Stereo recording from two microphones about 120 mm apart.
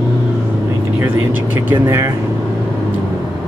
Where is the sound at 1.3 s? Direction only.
15° right (ahead or behind).